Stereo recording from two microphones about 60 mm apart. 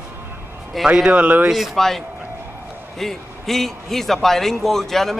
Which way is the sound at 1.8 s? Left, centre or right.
Centre.